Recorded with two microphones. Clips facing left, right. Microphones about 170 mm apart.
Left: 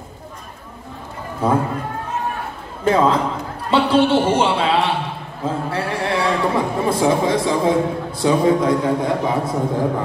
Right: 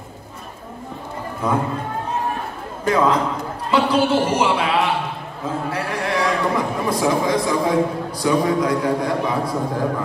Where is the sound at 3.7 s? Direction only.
30° left (ahead or behind).